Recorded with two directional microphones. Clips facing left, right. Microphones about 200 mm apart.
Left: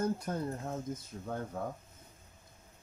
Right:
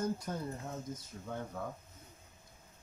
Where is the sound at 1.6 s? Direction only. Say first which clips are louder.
Left 4 dB; 45° left (ahead or behind).